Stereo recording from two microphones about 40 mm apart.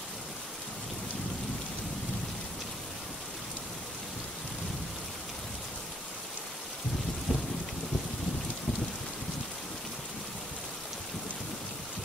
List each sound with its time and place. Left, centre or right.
7.3 s rain: right